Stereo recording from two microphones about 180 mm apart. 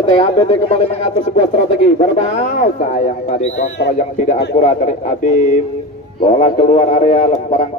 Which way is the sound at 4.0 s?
45° left (ahead or behind).